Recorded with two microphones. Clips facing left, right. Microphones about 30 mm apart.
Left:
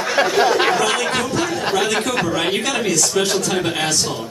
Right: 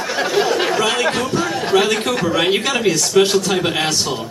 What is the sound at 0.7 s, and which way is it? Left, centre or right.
Chatter, centre.